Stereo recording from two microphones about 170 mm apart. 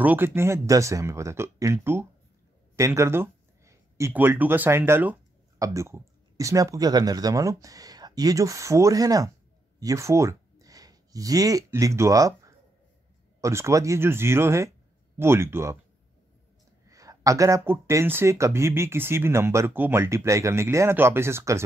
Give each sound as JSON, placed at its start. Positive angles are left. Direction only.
{"t": 0.0, "sound": "speech", "side_deg": -10}
{"t": 16.8, "sound": "a sound", "side_deg": -20}
{"t": 17.6, "sound": "speech", "side_deg": -15}